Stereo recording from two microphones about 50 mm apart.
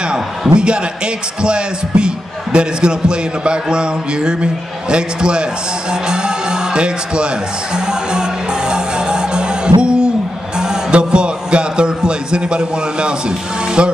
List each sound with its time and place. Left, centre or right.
0.5 s a man's voice: centre
7.7 s music: centre
13.8 s a man's voice: right